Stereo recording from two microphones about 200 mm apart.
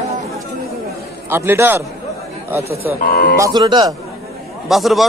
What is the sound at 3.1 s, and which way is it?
Speech, 50° left (ahead or behind).